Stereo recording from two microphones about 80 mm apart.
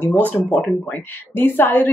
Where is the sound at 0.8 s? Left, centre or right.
Left.